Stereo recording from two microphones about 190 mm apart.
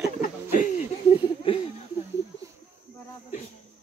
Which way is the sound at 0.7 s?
30° left (ahead or behind).